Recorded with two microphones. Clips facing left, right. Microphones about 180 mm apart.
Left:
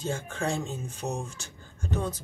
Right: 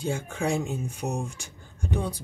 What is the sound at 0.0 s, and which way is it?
Speech, 15° right (ahead or behind).